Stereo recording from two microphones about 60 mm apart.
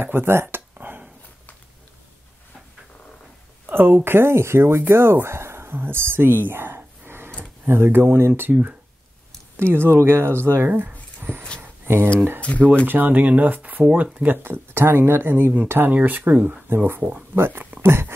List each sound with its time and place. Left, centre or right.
0.0 s speech: right
0.7 s a sound: right
3.6 s speech: right
9.6 s speech: right
10.7 s a sound: right
12.4 s speech: left
12.8 s speech: right
16.6 s speech: right
17.8 s a sound: right